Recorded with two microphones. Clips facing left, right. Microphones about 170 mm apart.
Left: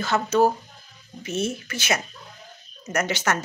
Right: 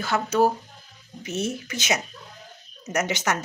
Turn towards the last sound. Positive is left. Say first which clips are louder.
# left 1 dB
turn(degrees=-15)  # may be behind; listen again after turning